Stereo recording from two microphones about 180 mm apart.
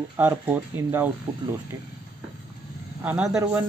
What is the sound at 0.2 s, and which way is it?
Speech, 10° right (ahead or behind).